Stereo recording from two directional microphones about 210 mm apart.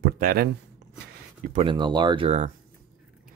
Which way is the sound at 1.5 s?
30° right (ahead or behind).